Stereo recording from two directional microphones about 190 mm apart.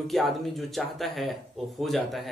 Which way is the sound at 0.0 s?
Centre (ahead or behind).